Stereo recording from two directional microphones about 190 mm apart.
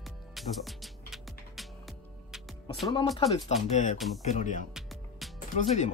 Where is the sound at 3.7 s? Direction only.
40° left (ahead or behind).